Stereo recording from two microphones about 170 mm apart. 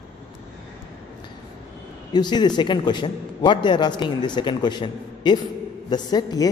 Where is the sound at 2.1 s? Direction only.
25° left (ahead or behind).